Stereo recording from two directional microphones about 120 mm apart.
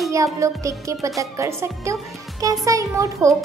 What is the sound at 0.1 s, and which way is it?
A child's voice, 25° right (ahead or behind).